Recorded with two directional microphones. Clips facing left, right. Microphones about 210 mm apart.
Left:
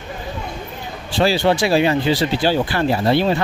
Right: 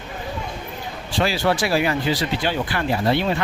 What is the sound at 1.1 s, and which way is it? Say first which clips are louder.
Speech: left 4 dB; 30° left (ahead or behind).